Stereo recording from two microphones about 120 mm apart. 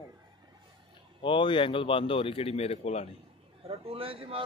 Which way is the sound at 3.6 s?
55° right (ahead or behind).